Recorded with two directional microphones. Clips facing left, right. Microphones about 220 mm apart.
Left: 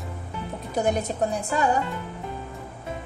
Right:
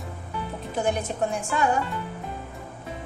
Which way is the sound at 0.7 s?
40° left (ahead or behind).